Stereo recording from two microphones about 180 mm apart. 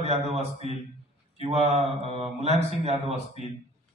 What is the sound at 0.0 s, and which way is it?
Speech, 35° right (ahead or behind).